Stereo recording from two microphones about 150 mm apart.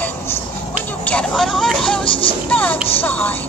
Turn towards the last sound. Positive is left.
turn(degrees=10)  # may be behind; listen again after turning